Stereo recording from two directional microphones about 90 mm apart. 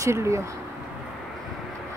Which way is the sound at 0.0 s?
30° right (ahead or behind).